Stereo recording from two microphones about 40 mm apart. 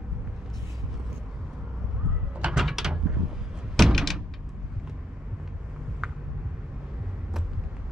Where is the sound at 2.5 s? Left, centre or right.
Centre.